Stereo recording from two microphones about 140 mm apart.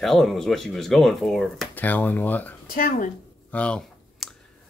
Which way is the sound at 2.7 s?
85° left.